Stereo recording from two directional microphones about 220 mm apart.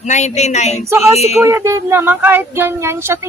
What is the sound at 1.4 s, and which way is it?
Speech, 15° right (ahead or behind).